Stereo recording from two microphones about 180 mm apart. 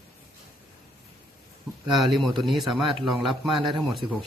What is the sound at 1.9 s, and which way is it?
Speech, centre (ahead or behind).